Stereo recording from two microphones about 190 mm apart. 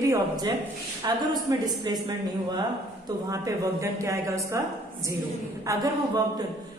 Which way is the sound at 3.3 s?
15° right (ahead or behind).